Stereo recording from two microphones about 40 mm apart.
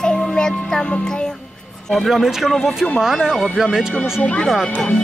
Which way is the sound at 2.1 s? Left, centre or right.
Centre.